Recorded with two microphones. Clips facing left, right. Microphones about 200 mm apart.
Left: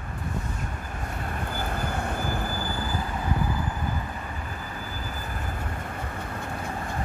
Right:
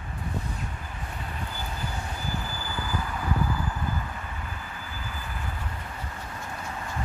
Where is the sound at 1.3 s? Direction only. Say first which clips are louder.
Left 7 dB; 55° left (ahead or behind).